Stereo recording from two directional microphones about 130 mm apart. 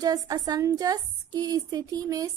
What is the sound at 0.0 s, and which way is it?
A woman's voice, 30° right (ahead or behind).